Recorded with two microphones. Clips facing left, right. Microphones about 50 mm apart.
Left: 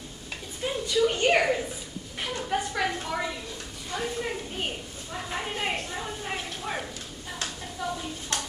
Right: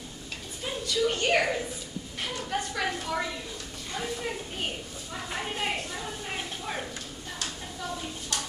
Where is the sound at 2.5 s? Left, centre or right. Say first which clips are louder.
Left 3 dB; centre.